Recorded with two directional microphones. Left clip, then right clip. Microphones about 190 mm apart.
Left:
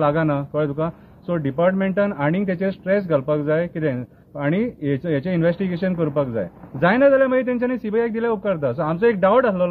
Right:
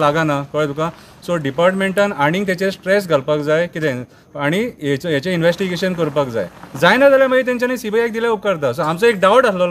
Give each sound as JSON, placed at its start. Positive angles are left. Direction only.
{"t": 0.0, "sound": "speech", "side_deg": -25}